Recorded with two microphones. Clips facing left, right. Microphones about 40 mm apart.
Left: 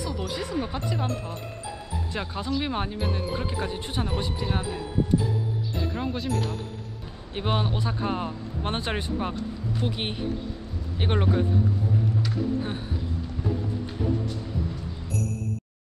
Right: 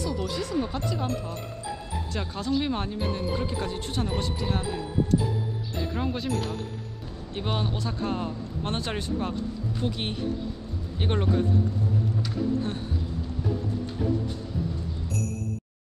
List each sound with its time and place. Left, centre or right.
0.0 s speech: centre
5.8 s speech: centre
7.3 s speech: centre